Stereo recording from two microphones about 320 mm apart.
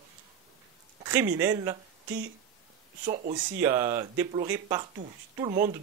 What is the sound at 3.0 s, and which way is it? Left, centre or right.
Speech, right.